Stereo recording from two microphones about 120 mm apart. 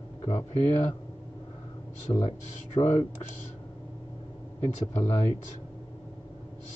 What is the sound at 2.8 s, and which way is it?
Speech, 60° left (ahead or behind).